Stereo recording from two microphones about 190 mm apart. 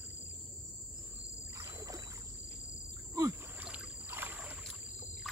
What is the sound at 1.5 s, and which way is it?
Rowboat, 15° right (ahead or behind).